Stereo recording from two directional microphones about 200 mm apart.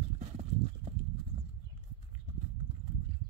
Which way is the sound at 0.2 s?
30° right (ahead or behind).